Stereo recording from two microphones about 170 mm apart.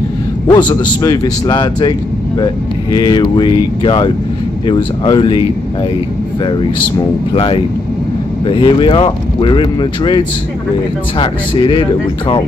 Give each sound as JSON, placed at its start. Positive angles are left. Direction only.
{"t": 0.5, "sound": "speech", "side_deg": 25}
{"t": 6.4, "sound": "speech", "side_deg": 30}